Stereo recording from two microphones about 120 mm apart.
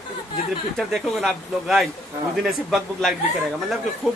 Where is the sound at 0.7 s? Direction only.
Centre (ahead or behind).